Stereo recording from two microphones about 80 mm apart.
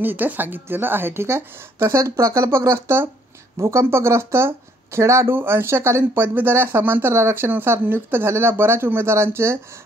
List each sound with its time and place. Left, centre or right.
0.0 s a woman's voice: right